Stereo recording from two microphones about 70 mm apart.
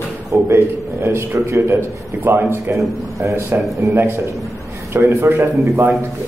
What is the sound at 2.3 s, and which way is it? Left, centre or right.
A man's voice, right.